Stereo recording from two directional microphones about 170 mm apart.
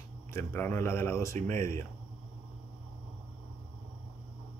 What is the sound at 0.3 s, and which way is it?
Speech, 15° left (ahead or behind).